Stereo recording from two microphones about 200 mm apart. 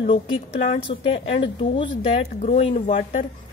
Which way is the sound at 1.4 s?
25° left (ahead or behind).